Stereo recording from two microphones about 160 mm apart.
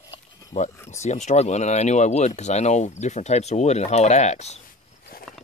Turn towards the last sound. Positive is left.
turn(degrees=45)  # may be behind; listen again after turning